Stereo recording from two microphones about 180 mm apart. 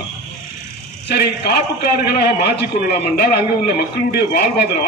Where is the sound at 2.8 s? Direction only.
60° left (ahead or behind).